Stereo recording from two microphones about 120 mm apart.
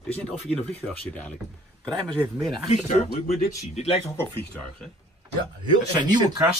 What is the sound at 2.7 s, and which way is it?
Speech, 70° left (ahead or behind).